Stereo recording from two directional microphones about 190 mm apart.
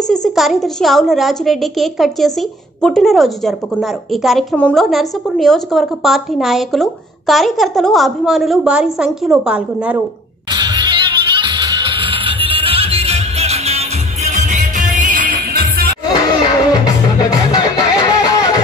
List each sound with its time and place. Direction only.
0.1 s a woman's voice: centre (ahead or behind)
10.5 s music: 20° right (ahead or behind); by 15.9 s 50° right (ahead or behind)
16.1 s music: 20° left (ahead or behind)